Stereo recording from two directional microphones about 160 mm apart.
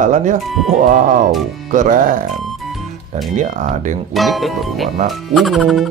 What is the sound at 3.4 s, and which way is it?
Speech, 50° right (ahead or behind).